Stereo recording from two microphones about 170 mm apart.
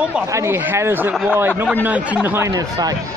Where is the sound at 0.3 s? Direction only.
15° right (ahead or behind).